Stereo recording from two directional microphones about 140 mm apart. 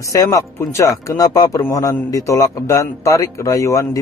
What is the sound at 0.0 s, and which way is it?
A man's voice, 25° left (ahead or behind).